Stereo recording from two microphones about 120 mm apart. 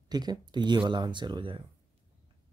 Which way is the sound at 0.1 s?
35° right (ahead or behind).